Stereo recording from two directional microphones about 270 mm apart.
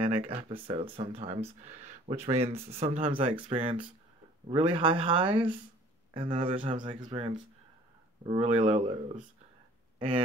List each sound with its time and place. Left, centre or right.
0.0 s speech: right